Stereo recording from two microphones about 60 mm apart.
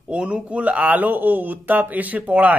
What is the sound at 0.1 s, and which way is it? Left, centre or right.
Speech, centre.